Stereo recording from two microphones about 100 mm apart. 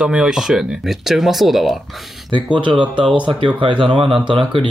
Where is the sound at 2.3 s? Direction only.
55° right (ahead or behind).